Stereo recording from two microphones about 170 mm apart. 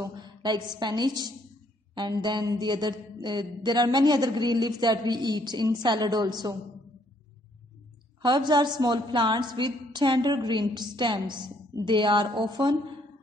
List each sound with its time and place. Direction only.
0.0 s a woman's voice: 25° right (ahead or behind)
8.2 s speech: 25° right (ahead or behind)